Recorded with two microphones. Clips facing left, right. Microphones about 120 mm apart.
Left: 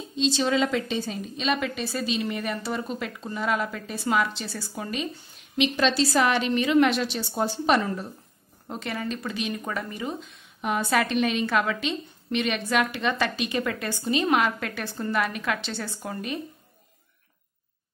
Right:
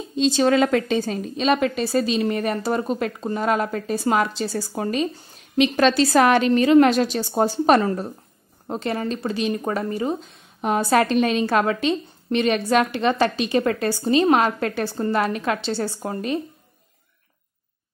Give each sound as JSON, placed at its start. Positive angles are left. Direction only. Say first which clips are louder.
{"t": 0.1, "sound": "a woman's voice", "louder": "right 6 dB", "side_deg": -50}